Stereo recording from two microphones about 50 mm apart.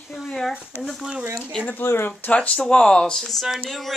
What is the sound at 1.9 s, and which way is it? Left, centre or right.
Speech, left.